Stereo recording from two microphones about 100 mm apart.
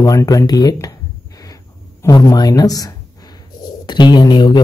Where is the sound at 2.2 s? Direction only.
40° left (ahead or behind).